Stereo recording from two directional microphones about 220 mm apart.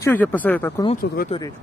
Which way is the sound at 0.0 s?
10° left (ahead or behind).